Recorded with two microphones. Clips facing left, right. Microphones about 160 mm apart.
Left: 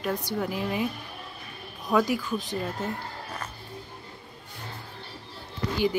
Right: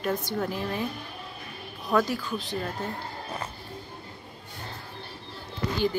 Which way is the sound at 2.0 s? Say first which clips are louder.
Left 3 dB; 15° left (ahead or behind).